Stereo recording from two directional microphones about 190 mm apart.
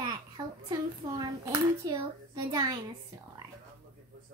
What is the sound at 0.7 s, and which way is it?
Hands, 20° right (ahead or behind).